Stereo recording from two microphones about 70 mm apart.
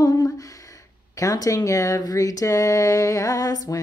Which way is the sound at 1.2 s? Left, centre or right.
Left.